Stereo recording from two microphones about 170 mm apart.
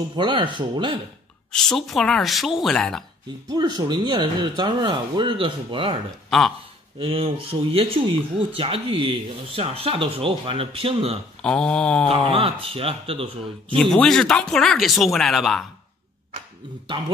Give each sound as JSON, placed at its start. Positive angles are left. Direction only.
{"t": 0.1, "sound": "speech", "side_deg": -30}
{"t": 1.5, "sound": "speech", "side_deg": 0}
{"t": 3.4, "sound": "speech", "side_deg": -25}
{"t": 7.0, "sound": "speech", "side_deg": -35}
{"t": 11.4, "sound": "speech", "side_deg": 5}
{"t": 12.3, "sound": "speech", "side_deg": -30}
{"t": 13.7, "sound": "speech", "side_deg": 5}
{"t": 16.9, "sound": "speech", "side_deg": -25}